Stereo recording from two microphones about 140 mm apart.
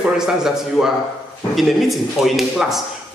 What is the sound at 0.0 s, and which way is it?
A man's voice, 5° right (ahead or behind).